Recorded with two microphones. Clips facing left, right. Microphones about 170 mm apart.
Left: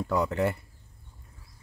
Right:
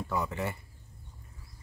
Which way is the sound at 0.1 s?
70° left (ahead or behind).